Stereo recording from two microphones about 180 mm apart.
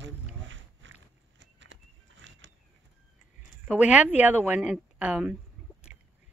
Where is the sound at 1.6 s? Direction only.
90° right.